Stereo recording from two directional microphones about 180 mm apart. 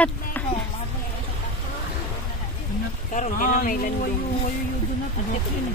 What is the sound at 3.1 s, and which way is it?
Speech, 45° left (ahead or behind).